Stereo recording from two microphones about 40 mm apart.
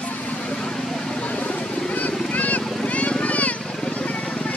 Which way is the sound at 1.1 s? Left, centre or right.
Left.